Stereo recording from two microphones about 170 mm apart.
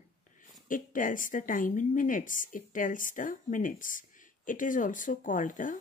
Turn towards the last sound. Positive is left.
turn(degrees=50)  # may be behind; listen again after turning